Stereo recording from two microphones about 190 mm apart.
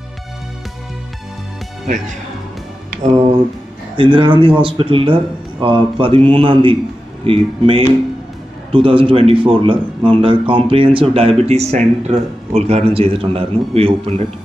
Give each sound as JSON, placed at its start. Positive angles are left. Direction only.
{"t": 3.9, "sound": "a man's voice", "side_deg": -25}